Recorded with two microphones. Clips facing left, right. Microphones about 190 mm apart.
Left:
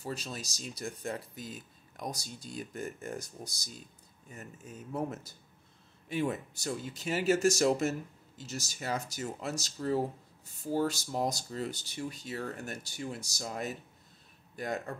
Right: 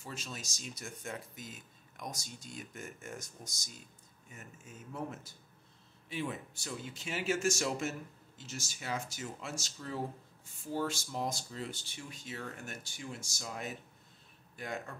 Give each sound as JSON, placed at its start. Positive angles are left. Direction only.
{"t": 0.0, "sound": "speech", "side_deg": 35}